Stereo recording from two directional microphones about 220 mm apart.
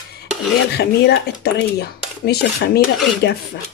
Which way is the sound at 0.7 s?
50° left (ahead or behind).